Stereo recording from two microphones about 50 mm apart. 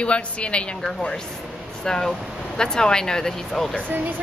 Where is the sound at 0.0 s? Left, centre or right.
Left.